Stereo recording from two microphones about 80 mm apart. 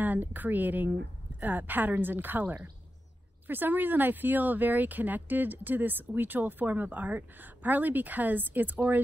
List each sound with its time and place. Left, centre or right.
0.0 s a woman's voice: right